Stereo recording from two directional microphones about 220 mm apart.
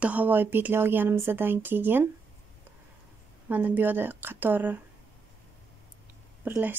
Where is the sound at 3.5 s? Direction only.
10° right (ahead or behind).